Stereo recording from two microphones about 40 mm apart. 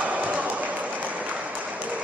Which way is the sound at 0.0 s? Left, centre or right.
Right.